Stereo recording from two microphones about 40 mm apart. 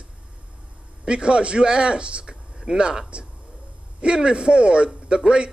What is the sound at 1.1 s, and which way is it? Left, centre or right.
A man's voice, right.